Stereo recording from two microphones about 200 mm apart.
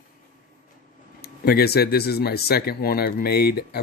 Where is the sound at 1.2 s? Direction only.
50° left (ahead or behind).